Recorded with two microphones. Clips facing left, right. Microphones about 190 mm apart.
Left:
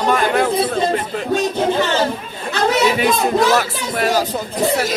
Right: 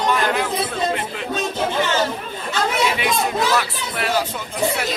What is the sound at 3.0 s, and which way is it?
Speech, 40° left (ahead or behind).